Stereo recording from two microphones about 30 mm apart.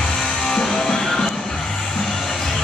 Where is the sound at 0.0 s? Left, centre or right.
Left.